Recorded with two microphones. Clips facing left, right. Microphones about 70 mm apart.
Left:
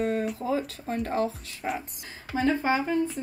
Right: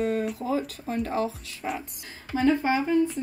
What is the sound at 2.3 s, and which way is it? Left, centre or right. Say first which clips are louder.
Speech: right 2 dB; left.